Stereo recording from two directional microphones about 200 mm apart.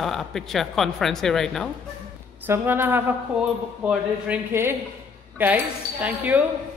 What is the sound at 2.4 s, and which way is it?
Speech, 10° right (ahead or behind).